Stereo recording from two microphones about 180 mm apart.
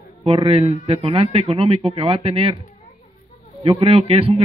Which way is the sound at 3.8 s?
30° right (ahead or behind).